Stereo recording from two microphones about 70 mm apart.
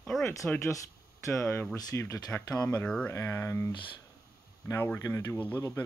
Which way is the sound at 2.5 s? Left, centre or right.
Left.